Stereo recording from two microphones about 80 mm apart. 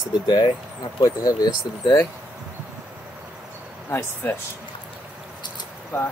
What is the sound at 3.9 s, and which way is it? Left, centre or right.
Speech, left.